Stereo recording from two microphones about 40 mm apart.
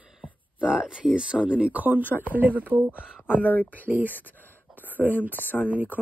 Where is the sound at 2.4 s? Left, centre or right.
Right.